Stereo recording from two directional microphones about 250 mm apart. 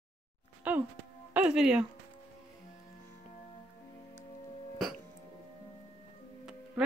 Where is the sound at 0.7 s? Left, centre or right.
Centre.